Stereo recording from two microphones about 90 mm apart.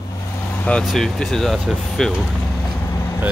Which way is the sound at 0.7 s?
10° left (ahead or behind).